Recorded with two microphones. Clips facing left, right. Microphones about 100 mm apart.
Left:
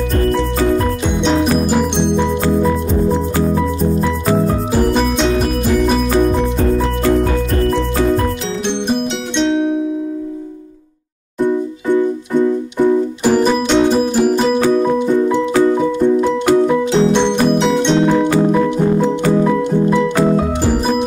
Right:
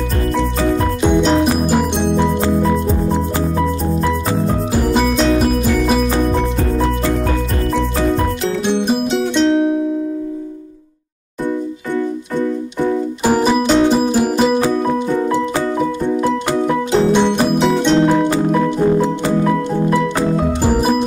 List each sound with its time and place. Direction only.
1.2 s music: centre (ahead or behind)
4.7 s music: centre (ahead or behind)
8.6 s music: 5° right (ahead or behind)
13.3 s music: 5° right (ahead or behind)
17.1 s music: 5° right (ahead or behind)